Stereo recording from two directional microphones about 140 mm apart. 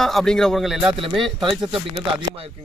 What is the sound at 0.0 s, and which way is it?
Speech, 5° left (ahead or behind).